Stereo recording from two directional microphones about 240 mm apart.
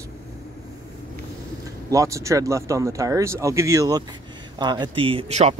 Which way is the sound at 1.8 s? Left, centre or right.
Centre.